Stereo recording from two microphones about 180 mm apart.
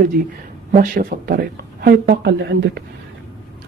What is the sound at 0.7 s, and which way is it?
Speech, 50° right (ahead or behind).